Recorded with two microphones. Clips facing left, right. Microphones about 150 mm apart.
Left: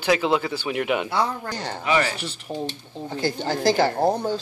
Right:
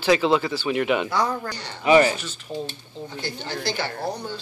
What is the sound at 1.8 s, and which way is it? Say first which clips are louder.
Speech: right 6 dB; 25° right (ahead or behind).